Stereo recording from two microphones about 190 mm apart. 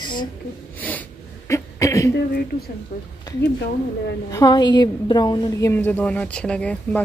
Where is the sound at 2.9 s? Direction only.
50° left (ahead or behind).